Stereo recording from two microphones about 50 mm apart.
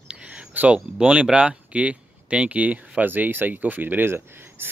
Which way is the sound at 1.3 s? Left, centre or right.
Right.